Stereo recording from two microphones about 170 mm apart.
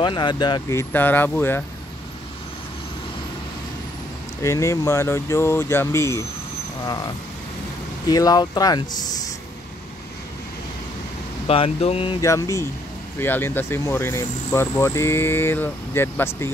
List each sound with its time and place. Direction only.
0.0 s speech: 25° left (ahead or behind)
4.4 s speech: 20° left (ahead or behind)
8.1 s speech: 20° left (ahead or behind)
11.4 s speech: 35° left (ahead or behind)
12.2 s speech: 20° left (ahead or behind)